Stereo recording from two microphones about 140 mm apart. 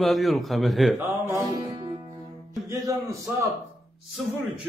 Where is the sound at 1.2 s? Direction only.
25° right (ahead or behind).